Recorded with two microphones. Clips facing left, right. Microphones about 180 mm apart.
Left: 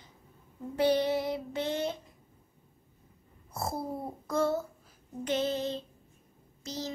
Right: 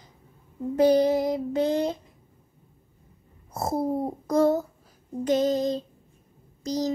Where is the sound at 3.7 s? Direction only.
45° right (ahead or behind).